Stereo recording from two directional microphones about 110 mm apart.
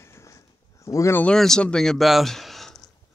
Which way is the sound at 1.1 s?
5° left (ahead or behind).